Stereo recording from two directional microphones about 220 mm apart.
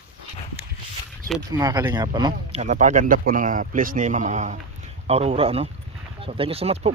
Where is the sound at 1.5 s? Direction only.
15° right (ahead or behind).